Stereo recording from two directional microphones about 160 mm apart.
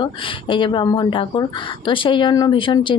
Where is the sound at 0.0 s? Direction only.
30° left (ahead or behind).